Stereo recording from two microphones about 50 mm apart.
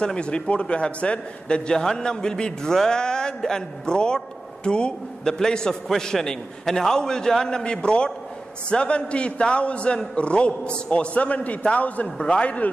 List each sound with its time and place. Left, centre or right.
0.0 s a man's voice: centre